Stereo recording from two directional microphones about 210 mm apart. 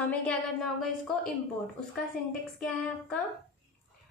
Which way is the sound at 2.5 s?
5° left (ahead or behind).